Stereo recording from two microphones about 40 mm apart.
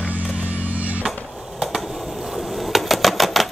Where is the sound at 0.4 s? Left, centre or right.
Right.